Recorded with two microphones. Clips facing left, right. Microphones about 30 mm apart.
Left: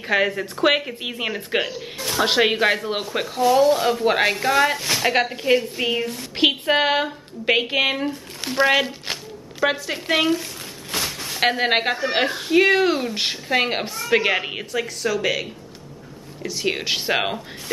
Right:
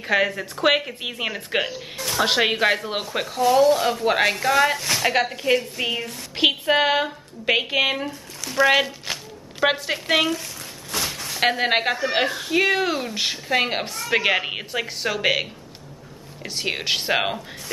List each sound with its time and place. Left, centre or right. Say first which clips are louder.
0.0 s a woman's voice: left 1 dB; centre
9.6 s a woman's voice: right 1 dB; centre
11.0 s speech: left 1 dB; centre
14.7 s speech: left 4 dB; right
16.6 s speech: left 1 dB; centre